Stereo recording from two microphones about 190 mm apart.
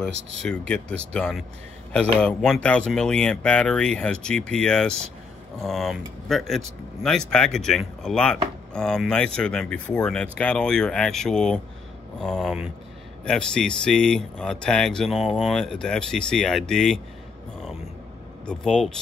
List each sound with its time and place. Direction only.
0.4 s speech: 5° left (ahead or behind)
18.4 s speech: 5° left (ahead or behind)